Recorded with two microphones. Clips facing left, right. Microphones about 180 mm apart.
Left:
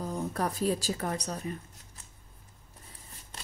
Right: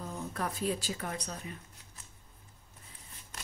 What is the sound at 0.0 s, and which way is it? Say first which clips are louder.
Speech: left 5 dB; 35° left (ahead or behind).